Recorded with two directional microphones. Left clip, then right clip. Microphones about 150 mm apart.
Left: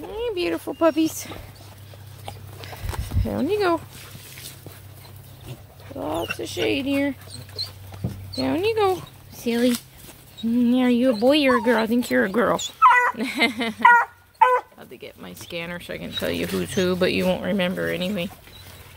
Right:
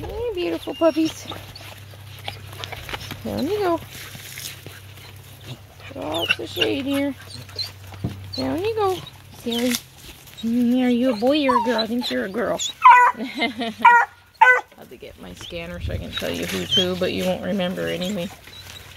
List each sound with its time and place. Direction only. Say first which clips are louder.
0.4 s speech: right 1 dB; centre (ahead or behind)
2.3 s dog: right 5 dB; 25° left (ahead or behind)
3.3 s speech: left 1 dB; 10° left (ahead or behind)
5.9 s speech: right 4 dB; 15° left (ahead or behind); by 7.1 s centre (ahead or behind)
7.6 s dog: right 2 dB; 5° left (ahead or behind)
7.9 s dog: right 3 dB; 20° left (ahead or behind)
8.4 s speech: left 1 dB; 15° left (ahead or behind)
8.9 s a sound: even; 30° left (ahead or behind)
10.4 s speech: even; 15° left (ahead or behind)
10.7 s speech: left 1 dB; 5° left (ahead or behind)
11.2 s speech: left 1 dB; 20° left (ahead or behind)
12.1 s speech: left 4 dB; 40° left (ahead or behind); by 13.8 s 20° left (ahead or behind)
13.8 s speech: right 1 dB; 5° right (ahead or behind); by 17.3 s 25° left (ahead or behind)
17.3 s speech: left 1 dB; 10° left (ahead or behind)